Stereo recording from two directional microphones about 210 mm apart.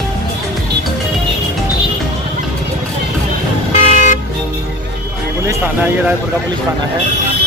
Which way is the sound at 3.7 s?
35° left (ahead or behind).